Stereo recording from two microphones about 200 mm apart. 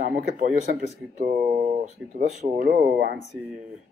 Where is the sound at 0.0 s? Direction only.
40° right (ahead or behind).